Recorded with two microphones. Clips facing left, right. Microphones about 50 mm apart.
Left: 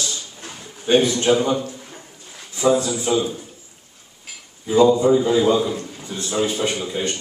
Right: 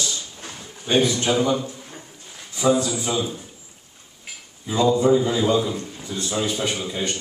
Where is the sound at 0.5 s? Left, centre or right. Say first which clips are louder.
Left 5 dB; centre.